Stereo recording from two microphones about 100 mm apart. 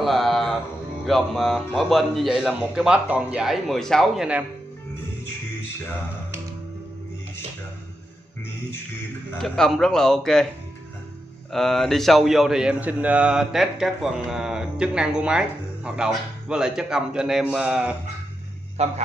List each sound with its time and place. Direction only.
0.0 s mantra: centre (ahead or behind)
1.0 s a man's voice: centre (ahead or behind)
9.4 s a man's voice: 5° left (ahead or behind)
11.5 s a man's voice: 5° left (ahead or behind)
18.8 s speech: 90° right